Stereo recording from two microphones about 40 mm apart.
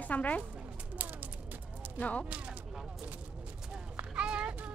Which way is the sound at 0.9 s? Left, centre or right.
Right.